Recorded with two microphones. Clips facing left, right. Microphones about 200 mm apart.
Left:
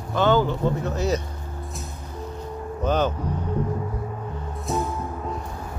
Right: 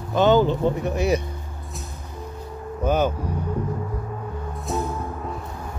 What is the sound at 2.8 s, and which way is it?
Speech, 10° right (ahead or behind).